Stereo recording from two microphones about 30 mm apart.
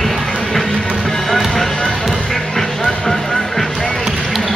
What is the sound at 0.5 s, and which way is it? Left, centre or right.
Music, centre.